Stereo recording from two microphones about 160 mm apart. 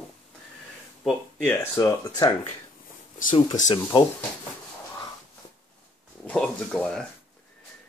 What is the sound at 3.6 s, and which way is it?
Speech, 25° left (ahead or behind).